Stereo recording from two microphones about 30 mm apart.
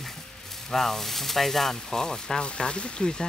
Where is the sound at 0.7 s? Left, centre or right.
Centre.